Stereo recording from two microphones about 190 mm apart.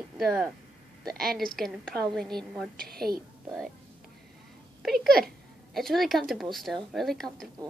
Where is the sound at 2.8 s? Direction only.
55° right (ahead or behind).